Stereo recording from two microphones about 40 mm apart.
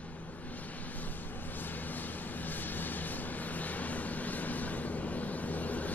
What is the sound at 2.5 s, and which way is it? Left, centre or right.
Vehicle, left.